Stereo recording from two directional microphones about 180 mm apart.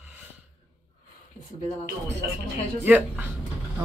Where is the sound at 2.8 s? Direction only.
10° right (ahead or behind).